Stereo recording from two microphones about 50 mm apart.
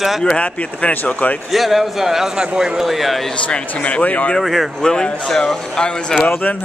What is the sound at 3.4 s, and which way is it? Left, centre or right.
Speech, left.